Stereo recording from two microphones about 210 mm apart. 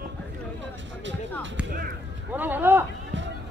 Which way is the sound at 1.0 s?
60° right (ahead or behind).